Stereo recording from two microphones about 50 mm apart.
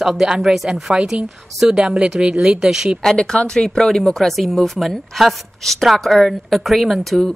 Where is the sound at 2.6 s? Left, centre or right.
Centre.